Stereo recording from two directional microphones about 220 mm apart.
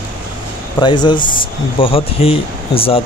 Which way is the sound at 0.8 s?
20° left (ahead or behind).